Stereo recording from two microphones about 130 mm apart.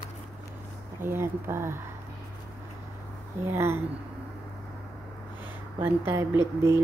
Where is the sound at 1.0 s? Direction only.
20° right (ahead or behind).